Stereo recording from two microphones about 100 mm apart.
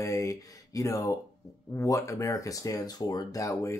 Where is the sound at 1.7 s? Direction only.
30° left (ahead or behind).